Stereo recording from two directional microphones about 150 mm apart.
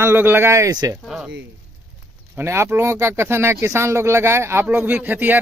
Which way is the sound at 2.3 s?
15° right (ahead or behind).